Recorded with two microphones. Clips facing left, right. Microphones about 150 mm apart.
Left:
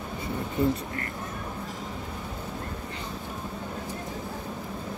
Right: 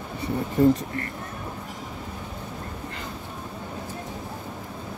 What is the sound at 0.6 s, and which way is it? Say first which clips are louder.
Speech: right 7 dB; 40° right (ahead or behind).